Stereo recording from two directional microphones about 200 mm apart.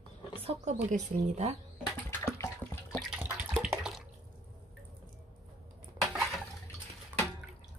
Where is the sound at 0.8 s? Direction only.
35° right (ahead or behind).